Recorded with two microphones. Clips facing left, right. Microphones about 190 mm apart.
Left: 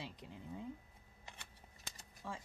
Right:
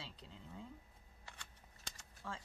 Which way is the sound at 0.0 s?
15° left (ahead or behind).